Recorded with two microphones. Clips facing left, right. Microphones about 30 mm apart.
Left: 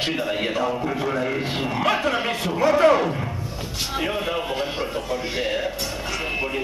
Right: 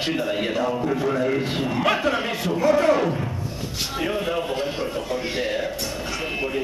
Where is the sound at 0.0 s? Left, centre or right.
Centre.